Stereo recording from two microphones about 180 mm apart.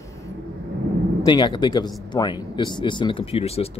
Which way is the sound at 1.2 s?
25° left (ahead or behind).